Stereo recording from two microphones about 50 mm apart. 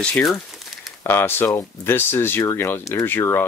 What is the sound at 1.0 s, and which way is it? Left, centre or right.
Speech, left.